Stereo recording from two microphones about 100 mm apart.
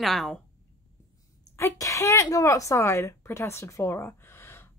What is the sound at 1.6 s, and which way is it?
Speech, 30° left (ahead or behind).